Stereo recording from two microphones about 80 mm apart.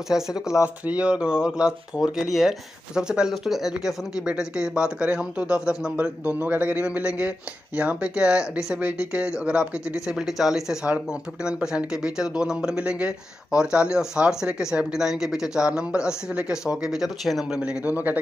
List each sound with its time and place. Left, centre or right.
0.1 s speech: centre
17.6 s a man's voice: centre